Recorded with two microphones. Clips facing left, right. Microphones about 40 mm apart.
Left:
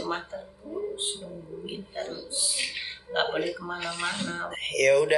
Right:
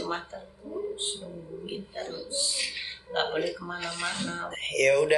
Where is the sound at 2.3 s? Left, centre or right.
Centre.